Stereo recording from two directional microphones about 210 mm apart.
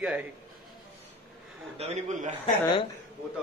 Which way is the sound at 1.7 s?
30° right (ahead or behind).